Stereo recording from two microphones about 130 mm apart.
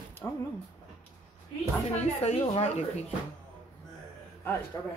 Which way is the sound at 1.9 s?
50° left (ahead or behind).